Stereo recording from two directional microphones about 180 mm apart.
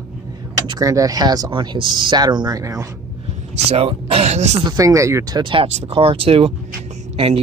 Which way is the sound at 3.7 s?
35° right (ahead or behind).